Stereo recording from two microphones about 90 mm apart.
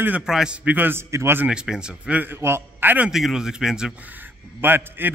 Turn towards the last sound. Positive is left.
turn(degrees=-25)  # may be behind; listen again after turning